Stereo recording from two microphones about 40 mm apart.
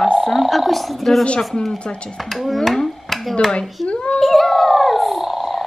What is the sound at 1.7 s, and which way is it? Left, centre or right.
Speech, left.